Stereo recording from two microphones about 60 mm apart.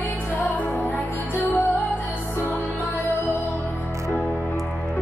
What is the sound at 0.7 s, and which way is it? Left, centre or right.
Music, left.